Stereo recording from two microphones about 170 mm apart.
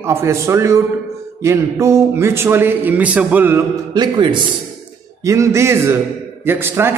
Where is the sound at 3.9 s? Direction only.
25° right (ahead or behind).